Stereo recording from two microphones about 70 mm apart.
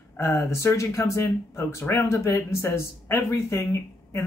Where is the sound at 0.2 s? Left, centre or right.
Left.